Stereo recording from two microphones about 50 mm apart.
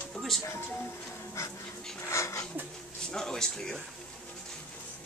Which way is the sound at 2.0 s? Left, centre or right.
Left.